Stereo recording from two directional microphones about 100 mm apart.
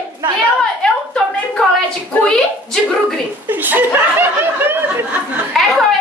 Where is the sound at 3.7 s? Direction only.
20° right (ahead or behind).